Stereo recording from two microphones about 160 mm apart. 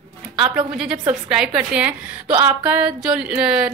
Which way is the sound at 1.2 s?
5° right (ahead or behind).